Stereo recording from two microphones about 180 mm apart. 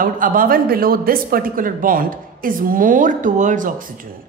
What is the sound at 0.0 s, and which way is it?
A woman's voice, 50° right (ahead or behind).